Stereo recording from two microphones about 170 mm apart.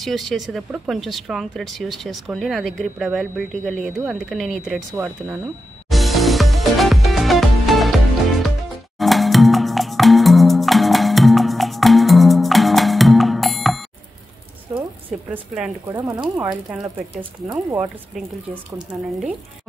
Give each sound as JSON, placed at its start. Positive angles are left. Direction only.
{"t": 0.0, "sound": "speech", "side_deg": 0}
{"t": 4.9, "sound": "speech", "side_deg": -15}
{"t": 5.9, "sound": "music", "side_deg": 0}
{"t": 14.7, "sound": "a sound", "side_deg": -5}
{"t": 15.9, "sound": "speech", "side_deg": -20}